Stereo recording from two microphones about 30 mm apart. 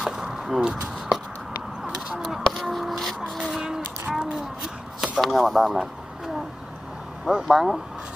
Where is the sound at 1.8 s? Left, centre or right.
Right.